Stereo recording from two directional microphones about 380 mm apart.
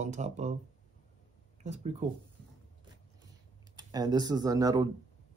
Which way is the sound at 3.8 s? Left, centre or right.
Centre.